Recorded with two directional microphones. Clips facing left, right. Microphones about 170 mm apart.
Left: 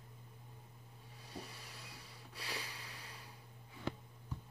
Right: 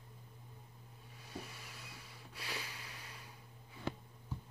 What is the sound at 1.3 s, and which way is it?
Snort, 30° left (ahead or behind).